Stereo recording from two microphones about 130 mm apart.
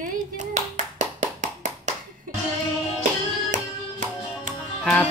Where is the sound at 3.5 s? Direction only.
90° right.